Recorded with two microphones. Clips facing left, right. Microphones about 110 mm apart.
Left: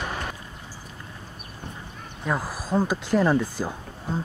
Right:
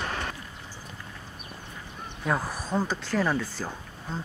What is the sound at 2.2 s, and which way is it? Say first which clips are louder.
Speech: left 1 dB; 5° left (ahead or behind).